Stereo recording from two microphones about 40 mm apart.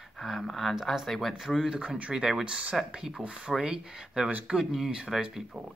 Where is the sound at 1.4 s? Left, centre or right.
Centre.